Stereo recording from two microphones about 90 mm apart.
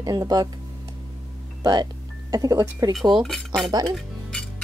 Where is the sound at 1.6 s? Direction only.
50° right (ahead or behind).